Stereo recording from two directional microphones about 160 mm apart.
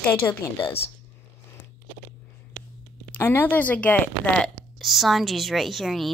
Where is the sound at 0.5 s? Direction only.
30° left (ahead or behind).